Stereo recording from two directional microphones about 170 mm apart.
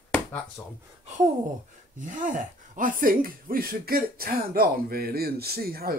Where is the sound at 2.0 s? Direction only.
50° right (ahead or behind).